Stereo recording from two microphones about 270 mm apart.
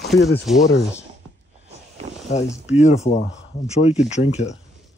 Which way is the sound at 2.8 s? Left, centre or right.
Left.